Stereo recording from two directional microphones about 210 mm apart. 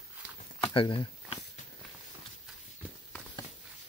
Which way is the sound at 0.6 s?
25° left (ahead or behind).